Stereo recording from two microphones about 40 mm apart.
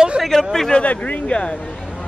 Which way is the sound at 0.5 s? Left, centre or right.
Centre.